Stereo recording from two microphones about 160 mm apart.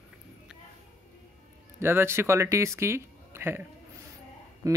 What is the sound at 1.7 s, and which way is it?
Speech, 15° right (ahead or behind).